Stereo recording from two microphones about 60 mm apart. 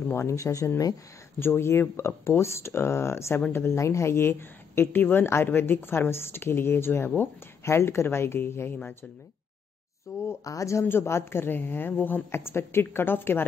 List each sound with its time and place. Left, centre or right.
0.1 s speech: left
1.4 s speech: left
10.1 s speech: left
10.9 s speech: left
12.3 s speech: left